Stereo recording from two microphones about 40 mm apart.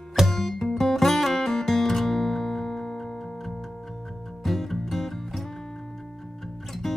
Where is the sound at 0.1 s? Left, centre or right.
Centre.